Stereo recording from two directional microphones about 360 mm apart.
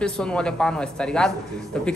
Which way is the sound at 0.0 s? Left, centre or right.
Centre.